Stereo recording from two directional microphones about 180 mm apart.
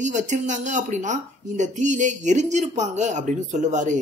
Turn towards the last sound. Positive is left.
turn(degrees=-45)  # may be behind; listen again after turning